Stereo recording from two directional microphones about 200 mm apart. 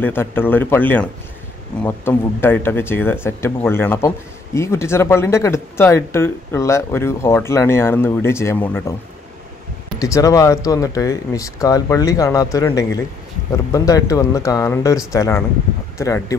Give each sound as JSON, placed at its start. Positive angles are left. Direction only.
{"t": 0.0, "sound": "speech", "side_deg": 10}
{"t": 9.9, "sound": "speech", "side_deg": 15}